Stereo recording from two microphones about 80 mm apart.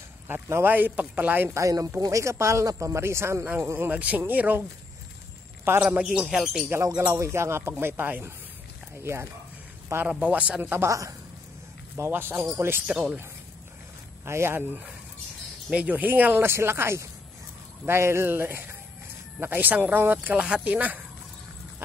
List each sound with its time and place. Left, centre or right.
0.3 s speech: right
1.5 s speech: right
5.8 s speech: centre
7.0 s speech: right
10.0 s speech: centre
10.9 s speech: right
12.0 s speech: right
12.8 s speech: centre
14.2 s speech: right
15.7 s speech: centre